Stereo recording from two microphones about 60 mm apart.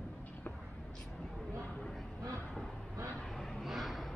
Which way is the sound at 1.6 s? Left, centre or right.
Centre.